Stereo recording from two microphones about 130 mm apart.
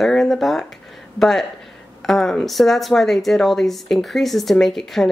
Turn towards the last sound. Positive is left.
turn(degrees=0)  # may be behind; listen again after turning